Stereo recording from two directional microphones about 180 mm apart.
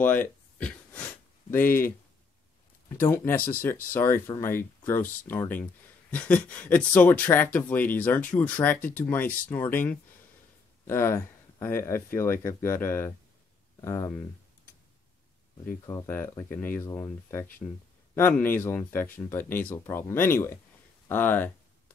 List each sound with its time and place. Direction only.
0.0 s a sound: 10° left (ahead or behind)
2.9 s speech: 15° left (ahead or behind)
15.8 s speech: 15° left (ahead or behind)